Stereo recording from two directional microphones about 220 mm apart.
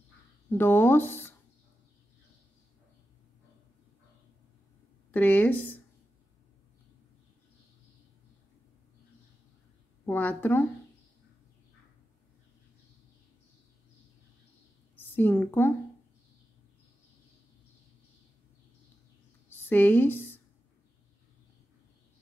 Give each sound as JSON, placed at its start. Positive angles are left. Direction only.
{"t": 0.5, "sound": "speech", "side_deg": 10}
{"t": 5.1, "sound": "speech", "side_deg": 5}
{"t": 10.0, "sound": "speech", "side_deg": 10}
{"t": 15.1, "sound": "speech", "side_deg": 10}
{"t": 19.7, "sound": "speech", "side_deg": 10}